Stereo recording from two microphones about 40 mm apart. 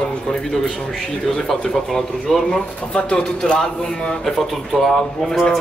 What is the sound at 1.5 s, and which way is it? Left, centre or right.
A man's voice, centre.